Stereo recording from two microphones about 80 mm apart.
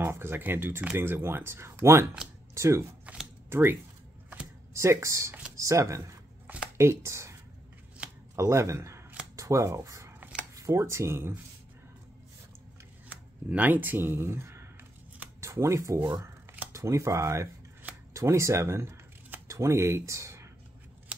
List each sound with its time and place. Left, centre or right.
0.0 s speech: right
4.7 s speech: right
8.4 s speech: right
13.5 s speech: right